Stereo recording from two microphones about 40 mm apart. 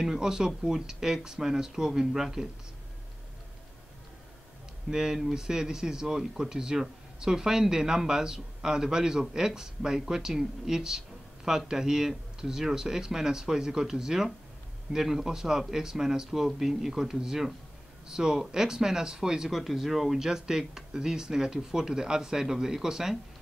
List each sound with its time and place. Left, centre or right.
0.0 s speech: centre
4.9 s speech: centre
19.5 s speech: centre